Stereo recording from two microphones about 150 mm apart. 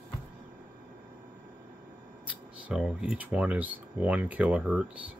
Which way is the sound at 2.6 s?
5° right (ahead or behind).